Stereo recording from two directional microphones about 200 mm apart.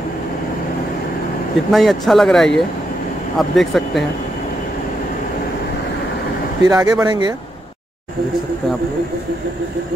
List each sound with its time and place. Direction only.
1.7 s speech: centre (ahead or behind)
6.6 s speech: 15° right (ahead or behind)